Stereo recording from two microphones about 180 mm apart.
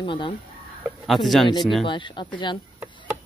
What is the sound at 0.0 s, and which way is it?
Speech, 25° left (ahead or behind).